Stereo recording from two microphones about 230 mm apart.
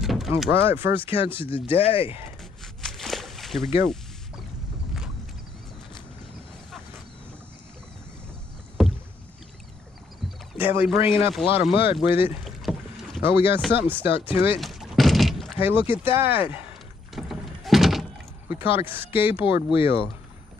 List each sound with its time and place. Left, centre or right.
0.0 s power windows: centre
0.4 s speech: centre
1.8 s speech: left
2.6 s a sound: centre
8.8 s rowboat: centre
10.5 s speech: centre
11.7 s speech: left
12.4 s rowboat: centre
13.5 s speech: centre
14.6 s rowboat: centre
17.1 s thunk: centre
18.7 s speech: centre
19.4 s speech: left